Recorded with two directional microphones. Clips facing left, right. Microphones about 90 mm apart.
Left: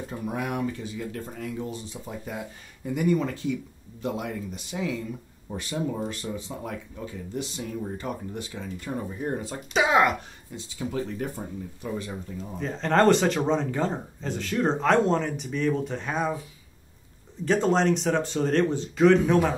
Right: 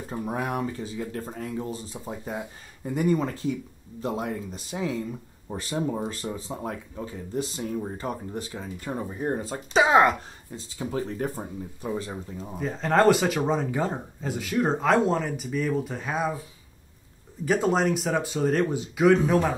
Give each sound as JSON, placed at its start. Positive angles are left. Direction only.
{"t": 0.3, "sound": "speech", "side_deg": -35}
{"t": 12.5, "sound": "speech", "side_deg": -5}
{"t": 17.5, "sound": "speech", "side_deg": -5}